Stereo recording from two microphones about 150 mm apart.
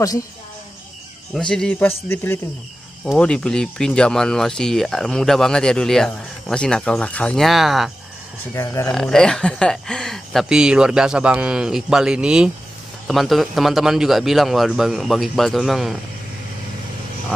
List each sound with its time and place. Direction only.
1.3 s speech: 5° left (ahead or behind)
8.5 s speech: 20° left (ahead or behind)
8.9 s speech: 5° left (ahead or behind)